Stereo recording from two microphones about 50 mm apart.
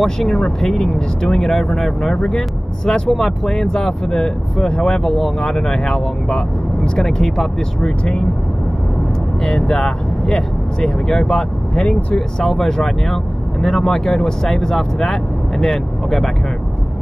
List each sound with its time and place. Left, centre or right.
0.0 s speech: centre
9.4 s speech: centre